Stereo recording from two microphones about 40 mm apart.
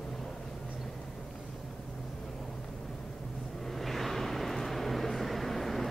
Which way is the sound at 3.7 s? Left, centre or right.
Centre.